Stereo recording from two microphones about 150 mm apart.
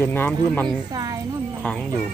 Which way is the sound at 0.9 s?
25° right (ahead or behind).